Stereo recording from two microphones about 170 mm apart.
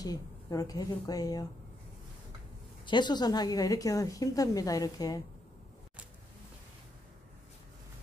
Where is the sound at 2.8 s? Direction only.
25° left (ahead or behind).